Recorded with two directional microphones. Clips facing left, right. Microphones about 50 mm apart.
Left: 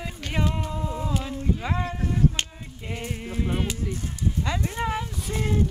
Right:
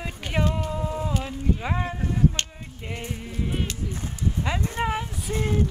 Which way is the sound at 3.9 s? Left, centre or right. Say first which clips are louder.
Even; right.